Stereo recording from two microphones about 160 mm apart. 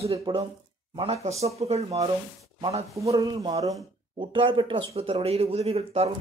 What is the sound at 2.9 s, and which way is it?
A man's voice, 20° right (ahead or behind).